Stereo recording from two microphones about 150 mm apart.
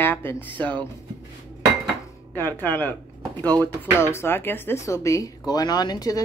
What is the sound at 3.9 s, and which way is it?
Speech, 15° left (ahead or behind).